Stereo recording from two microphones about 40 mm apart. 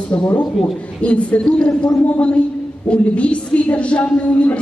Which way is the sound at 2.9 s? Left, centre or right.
Left.